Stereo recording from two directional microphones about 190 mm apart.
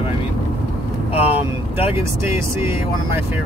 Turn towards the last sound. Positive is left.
turn(degrees=30)  # may be behind; listen again after turning